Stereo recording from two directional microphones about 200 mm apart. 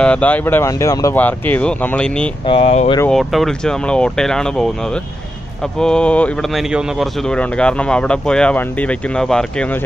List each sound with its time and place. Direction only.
0.0 s speech: 5° left (ahead or behind)
2.4 s speech: 30° left (ahead or behind)
3.1 s speech: centre (ahead or behind)
5.8 s speech: 5° left (ahead or behind)